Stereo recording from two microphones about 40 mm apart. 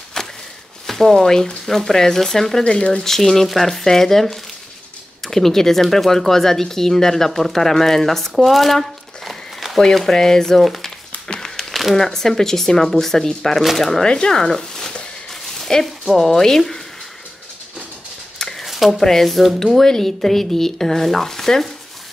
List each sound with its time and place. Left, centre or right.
0.2 s a sound: centre
0.8 s speech: centre
2.6 s speech: left
3.1 s speech: centre
10.6 s speech: centre
11.4 s crumpling: centre
11.9 s speech: centre
14.0 s speech: centre
15.6 s a sound: centre
16.2 s speech: centre
18.6 s a sound: centre
18.9 s speech: centre
19.2 s speech: centre